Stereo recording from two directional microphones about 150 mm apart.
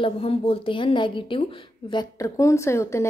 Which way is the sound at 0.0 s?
40° left (ahead or behind).